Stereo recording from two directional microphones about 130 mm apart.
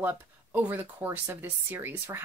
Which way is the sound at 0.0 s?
15° right (ahead or behind).